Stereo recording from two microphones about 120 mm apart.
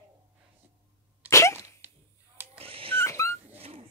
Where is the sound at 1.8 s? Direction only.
15° right (ahead or behind).